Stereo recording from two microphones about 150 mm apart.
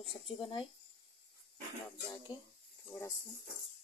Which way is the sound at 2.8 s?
20° left (ahead or behind).